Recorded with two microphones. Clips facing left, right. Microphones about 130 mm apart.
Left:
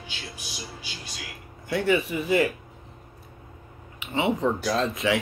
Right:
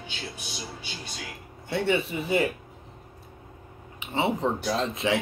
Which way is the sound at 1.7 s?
30° right (ahead or behind).